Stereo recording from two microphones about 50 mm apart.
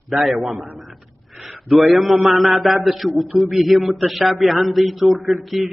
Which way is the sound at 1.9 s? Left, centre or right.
Centre.